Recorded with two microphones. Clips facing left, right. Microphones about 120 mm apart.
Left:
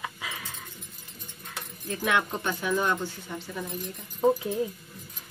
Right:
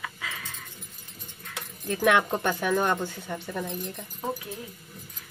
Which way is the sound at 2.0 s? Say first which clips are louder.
Right 5 dB; 60° right (ahead or behind).